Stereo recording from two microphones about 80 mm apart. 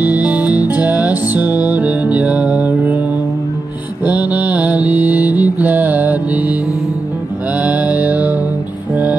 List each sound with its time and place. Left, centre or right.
0.0 s music: right
4.0 s mantra: centre
7.5 s mantra: right